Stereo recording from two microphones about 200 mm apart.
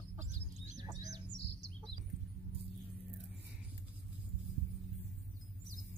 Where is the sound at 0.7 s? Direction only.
20° right (ahead or behind).